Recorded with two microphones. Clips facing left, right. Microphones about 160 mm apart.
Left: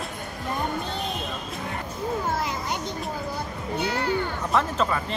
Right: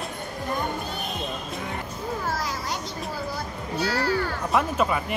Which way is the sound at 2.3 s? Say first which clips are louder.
Left 2 dB; 20° left (ahead or behind).